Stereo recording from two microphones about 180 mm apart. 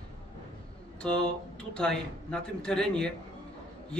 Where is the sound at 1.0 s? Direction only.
5° left (ahead or behind).